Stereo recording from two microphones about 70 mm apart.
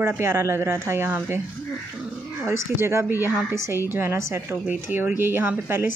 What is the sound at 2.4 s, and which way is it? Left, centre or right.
Speech, right.